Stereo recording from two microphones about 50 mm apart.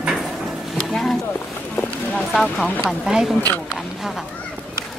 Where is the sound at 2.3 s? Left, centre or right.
Centre.